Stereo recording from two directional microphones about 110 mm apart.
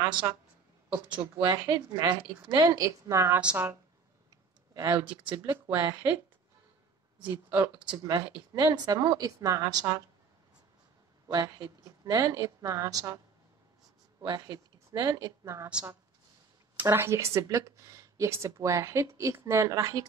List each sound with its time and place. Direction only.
0.0 s a woman's voice: 45° right (ahead or behind)
1.3 s a woman's voice: 30° right (ahead or behind)
3.3 s speech: 10° right (ahead or behind)
4.7 s a woman's voice: 35° right (ahead or behind)
5.0 s speech: 10° right (ahead or behind)
5.3 s a woman's voice: 30° right (ahead or behind)
7.2 s a woman's voice: 35° right (ahead or behind)
11.2 s a woman's voice: 35° right (ahead or behind)
14.2 s speech: 35° right (ahead or behind)
16.8 s speech: 25° right (ahead or behind)